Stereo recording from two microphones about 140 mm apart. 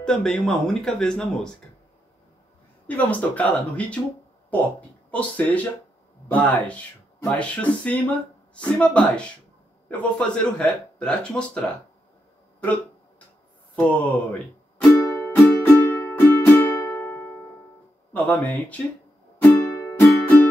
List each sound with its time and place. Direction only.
0.0 s speech: 5° left (ahead or behind)
3.0 s a man's voice: 10° left (ahead or behind)
5.1 s a man's voice: 10° left (ahead or behind)
13.7 s a man's voice: 10° left (ahead or behind)
15.0 s music: 15° left (ahead or behind)
18.1 s a man's voice: 10° left (ahead or behind)
19.4 s music: 15° left (ahead or behind)